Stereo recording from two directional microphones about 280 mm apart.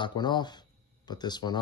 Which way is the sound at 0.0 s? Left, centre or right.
Centre.